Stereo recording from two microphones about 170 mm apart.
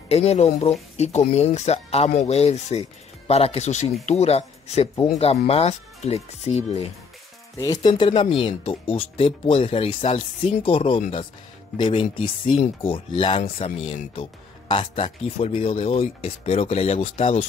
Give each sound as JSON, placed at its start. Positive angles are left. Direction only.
{"t": 0.1, "sound": "speech", "side_deg": 40}
{"t": 7.5, "sound": "speech", "side_deg": 20}